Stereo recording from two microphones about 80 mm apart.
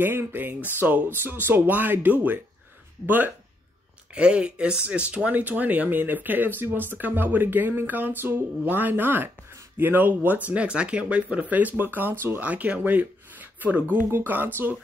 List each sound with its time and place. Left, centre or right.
0.0 s speech: right
4.1 s speech: centre